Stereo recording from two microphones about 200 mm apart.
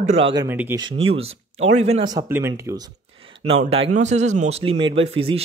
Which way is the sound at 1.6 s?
35° right (ahead or behind).